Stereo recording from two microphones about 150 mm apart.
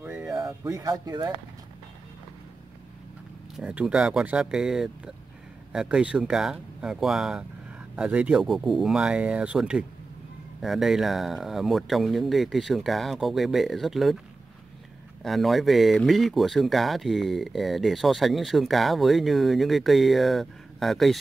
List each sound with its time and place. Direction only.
0.0 s a sound: 15° right (ahead or behind)
3.5 s speech: 5° right (ahead or behind)
15.2 s speech: centre (ahead or behind)